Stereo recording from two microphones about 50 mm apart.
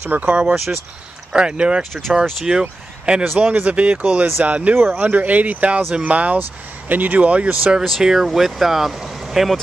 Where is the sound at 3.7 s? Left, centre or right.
Right.